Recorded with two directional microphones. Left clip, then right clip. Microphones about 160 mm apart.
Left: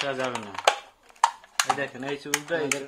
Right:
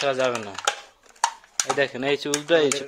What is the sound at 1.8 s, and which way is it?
Speech, 70° right (ahead or behind).